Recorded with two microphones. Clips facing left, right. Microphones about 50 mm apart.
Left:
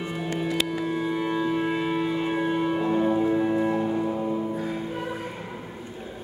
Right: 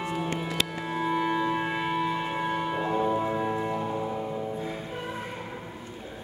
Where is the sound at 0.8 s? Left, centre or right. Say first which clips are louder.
Left 1 dB; centre.